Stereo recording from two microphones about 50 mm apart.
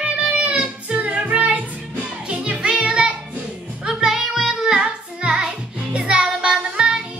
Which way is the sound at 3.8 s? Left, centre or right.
Centre.